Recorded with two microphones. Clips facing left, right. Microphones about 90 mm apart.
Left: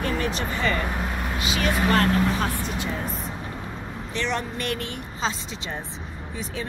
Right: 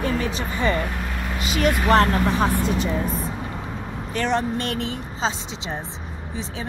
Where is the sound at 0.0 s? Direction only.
15° right (ahead or behind).